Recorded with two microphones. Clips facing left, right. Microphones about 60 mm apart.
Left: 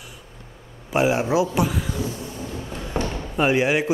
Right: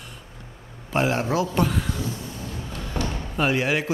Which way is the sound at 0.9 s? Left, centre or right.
Centre.